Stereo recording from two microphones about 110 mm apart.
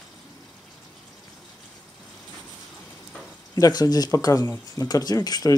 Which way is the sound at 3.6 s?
40° left (ahead or behind).